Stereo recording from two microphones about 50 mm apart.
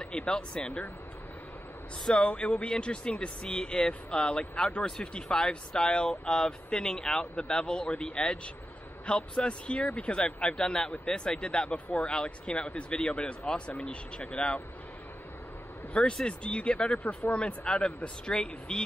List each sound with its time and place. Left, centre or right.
0.0 s speech: left
2.0 s speech: left
15.9 s speech: left